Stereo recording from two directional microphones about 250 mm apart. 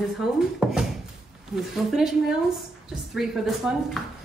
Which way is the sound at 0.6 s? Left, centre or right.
Centre.